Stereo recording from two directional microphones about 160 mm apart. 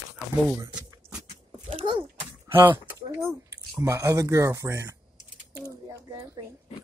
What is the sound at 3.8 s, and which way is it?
Speech, 20° right (ahead or behind).